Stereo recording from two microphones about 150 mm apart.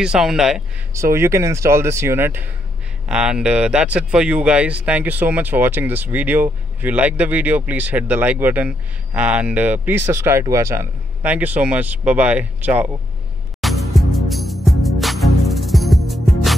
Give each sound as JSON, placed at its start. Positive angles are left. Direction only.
{"t": 0.0, "sound": "a man's voice", "side_deg": -5}
{"t": 0.9, "sound": "speech", "side_deg": -20}
{"t": 13.6, "sound": "music", "side_deg": 0}